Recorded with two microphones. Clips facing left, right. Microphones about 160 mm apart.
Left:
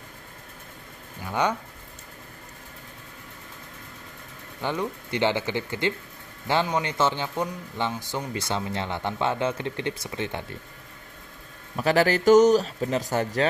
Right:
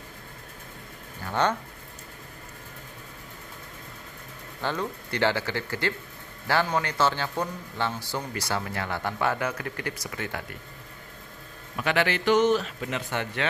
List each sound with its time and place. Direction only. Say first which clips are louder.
1.2 s a sound: even; 10° left (ahead or behind)
4.6 s speech: left 2 dB; 15° left (ahead or behind)
11.7 s speech: left 5 dB; 35° left (ahead or behind)